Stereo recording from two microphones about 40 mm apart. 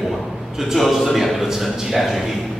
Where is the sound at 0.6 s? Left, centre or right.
Centre.